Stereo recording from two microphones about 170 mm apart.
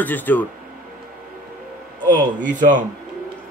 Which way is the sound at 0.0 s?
10° left (ahead or behind).